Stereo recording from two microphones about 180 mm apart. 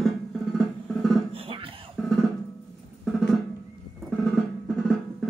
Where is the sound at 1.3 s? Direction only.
30° right (ahead or behind).